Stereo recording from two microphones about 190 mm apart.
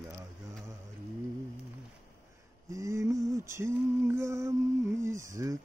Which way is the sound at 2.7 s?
15° right (ahead or behind).